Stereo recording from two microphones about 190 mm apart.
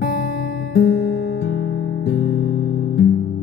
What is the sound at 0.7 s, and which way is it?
Music, 65° left (ahead or behind).